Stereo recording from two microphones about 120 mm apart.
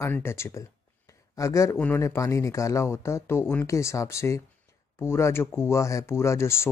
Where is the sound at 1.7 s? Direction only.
10° left (ahead or behind).